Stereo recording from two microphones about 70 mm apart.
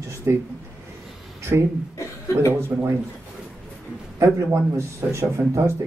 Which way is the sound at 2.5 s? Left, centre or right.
Right.